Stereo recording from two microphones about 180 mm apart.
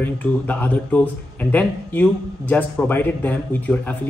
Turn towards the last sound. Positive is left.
turn(degrees=10)  # may be behind; listen again after turning